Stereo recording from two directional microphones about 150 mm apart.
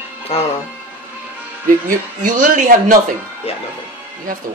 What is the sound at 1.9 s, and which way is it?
Speech, 60° right (ahead or behind).